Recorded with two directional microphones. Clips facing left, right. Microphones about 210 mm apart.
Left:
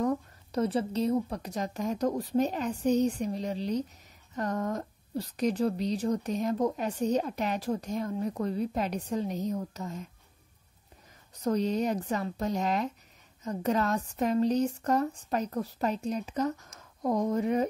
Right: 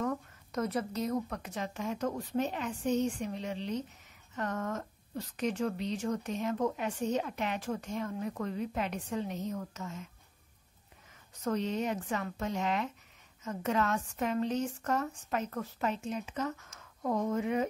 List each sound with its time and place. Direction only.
0.0 s a woman's voice: 30° left (ahead or behind)
11.3 s a woman's voice: 35° left (ahead or behind)